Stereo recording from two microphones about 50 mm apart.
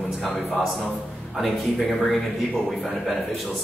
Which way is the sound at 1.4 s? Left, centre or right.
Centre.